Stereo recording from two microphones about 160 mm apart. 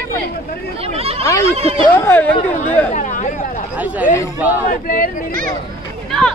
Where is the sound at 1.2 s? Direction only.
20° left (ahead or behind).